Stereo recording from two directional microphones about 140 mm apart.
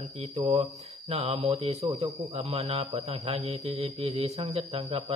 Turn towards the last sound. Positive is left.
turn(degrees=-45)  # may be behind; listen again after turning